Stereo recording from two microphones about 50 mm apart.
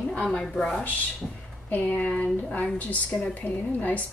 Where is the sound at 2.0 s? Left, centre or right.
Left.